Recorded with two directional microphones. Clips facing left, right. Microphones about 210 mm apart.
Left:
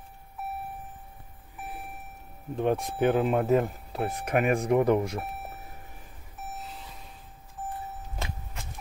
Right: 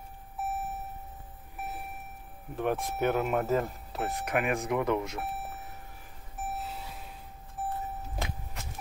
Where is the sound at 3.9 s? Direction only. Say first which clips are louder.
Left 3 dB; 30° left (ahead or behind).